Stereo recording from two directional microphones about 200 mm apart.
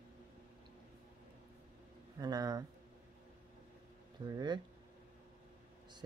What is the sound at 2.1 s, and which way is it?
Speech, 20° right (ahead or behind).